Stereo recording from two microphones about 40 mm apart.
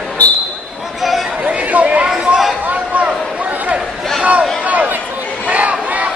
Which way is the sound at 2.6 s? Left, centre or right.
Right.